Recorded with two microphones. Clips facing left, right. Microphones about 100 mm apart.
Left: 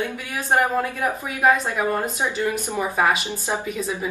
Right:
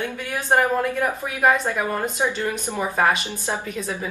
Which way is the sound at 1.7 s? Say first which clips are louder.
Left 1 dB; 15° left (ahead or behind).